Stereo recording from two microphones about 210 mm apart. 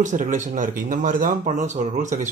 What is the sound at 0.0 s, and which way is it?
Speech, 35° right (ahead or behind).